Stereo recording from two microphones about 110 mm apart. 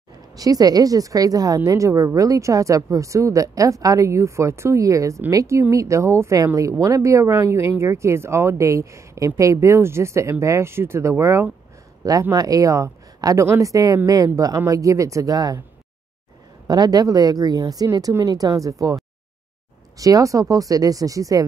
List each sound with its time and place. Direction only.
0.4 s a woman's voice: 35° right (ahead or behind)
16.6 s a woman's voice: 35° right (ahead or behind)